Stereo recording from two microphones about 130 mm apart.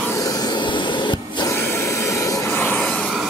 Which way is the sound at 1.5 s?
20° left (ahead or behind).